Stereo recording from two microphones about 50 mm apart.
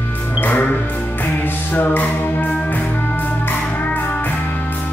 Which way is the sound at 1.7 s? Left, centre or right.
Left.